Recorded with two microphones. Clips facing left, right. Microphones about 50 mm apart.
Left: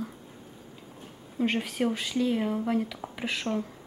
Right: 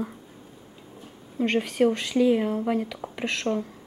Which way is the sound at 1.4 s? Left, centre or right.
Centre.